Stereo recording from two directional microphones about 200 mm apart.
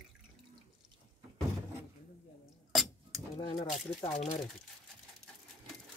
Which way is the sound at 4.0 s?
30° left (ahead or behind).